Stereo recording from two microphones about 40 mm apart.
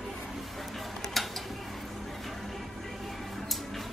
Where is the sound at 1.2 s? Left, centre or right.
Centre.